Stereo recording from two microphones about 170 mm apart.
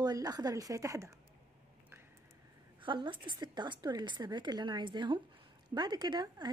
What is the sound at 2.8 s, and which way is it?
A woman's voice, 30° right (ahead or behind).